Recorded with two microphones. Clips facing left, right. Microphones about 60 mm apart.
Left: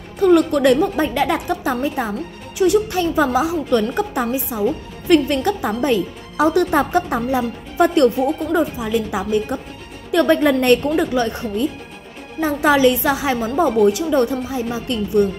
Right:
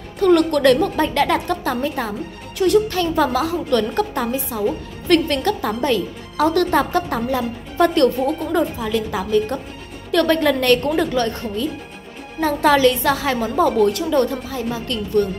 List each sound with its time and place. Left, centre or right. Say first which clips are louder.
0.2 s a woman's voice: left 1 dB; centre